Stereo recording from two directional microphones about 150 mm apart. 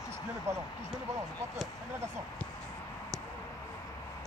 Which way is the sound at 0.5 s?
20° right (ahead or behind).